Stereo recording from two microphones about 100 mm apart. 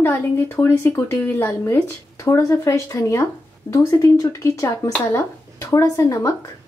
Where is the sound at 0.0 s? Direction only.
25° left (ahead or behind).